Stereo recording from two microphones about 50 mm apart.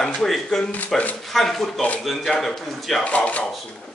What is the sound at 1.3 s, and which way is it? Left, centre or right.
A man's voice, centre.